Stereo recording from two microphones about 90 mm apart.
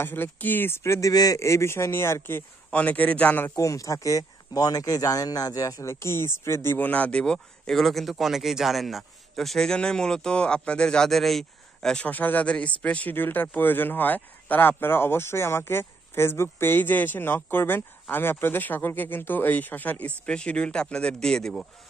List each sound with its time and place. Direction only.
0.0 s speech: 25° left (ahead or behind)
1.1 s speech: 40° left (ahead or behind); by 3.5 s 20° left (ahead or behind)
3.5 s speech: 40° left (ahead or behind); by 21.6 s 5° left (ahead or behind)